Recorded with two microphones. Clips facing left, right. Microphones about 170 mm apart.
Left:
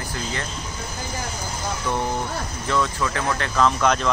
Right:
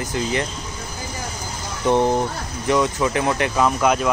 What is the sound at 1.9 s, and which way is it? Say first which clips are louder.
Speech: right 9 dB; 25° right (ahead or behind).